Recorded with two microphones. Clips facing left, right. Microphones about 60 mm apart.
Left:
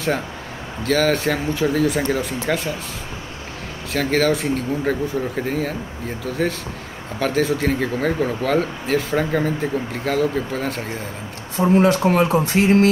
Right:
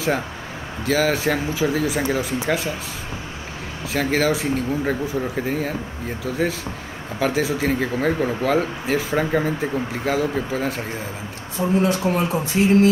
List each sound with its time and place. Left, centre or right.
0.8 s speech: centre
3.9 s speech: centre
11.8 s speech: left